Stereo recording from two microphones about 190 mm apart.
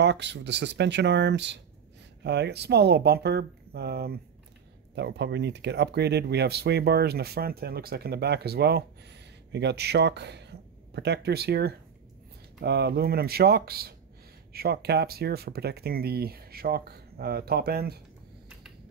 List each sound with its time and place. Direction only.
0.0 s speech: 65° right (ahead or behind)